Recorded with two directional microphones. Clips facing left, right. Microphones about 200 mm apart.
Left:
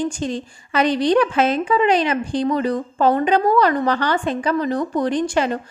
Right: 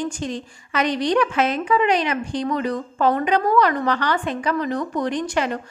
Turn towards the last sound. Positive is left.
turn(degrees=30)  # may be behind; listen again after turning